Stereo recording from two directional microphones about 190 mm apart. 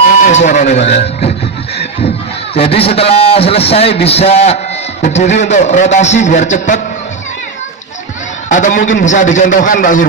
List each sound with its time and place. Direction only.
0.2 s a man's voice: 40° left (ahead or behind)
2.5 s a man's voice: 30° left (ahead or behind)
8.5 s a man's voice: 40° left (ahead or behind)